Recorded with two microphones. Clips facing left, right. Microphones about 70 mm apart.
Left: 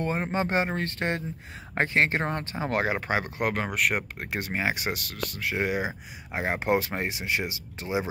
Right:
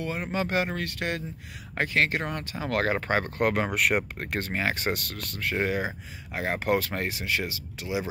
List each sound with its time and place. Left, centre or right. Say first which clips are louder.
0.0 s speech: left 2 dB; left
2.9 s speech: right 1 dB; centre; by 8.1 s left